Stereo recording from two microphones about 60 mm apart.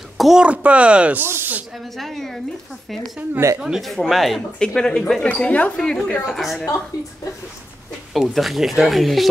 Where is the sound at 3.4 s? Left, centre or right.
Right.